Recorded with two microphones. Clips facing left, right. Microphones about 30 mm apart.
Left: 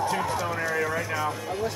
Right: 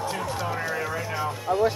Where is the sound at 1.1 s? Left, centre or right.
Centre.